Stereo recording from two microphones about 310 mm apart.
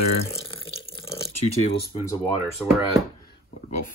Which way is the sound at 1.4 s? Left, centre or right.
Left.